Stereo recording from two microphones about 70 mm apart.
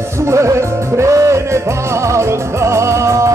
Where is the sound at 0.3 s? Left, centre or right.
Right.